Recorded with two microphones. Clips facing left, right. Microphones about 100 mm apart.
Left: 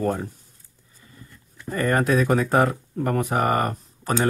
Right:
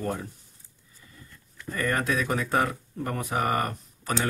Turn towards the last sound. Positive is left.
turn(degrees=35)  # may be behind; listen again after turning